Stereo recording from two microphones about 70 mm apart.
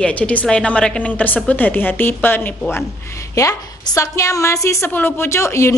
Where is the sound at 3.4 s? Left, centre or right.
Left.